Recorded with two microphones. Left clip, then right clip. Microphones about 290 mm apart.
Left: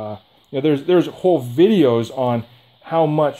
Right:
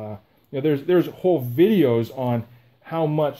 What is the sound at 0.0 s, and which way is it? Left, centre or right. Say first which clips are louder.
Speech: left 6 dB; left.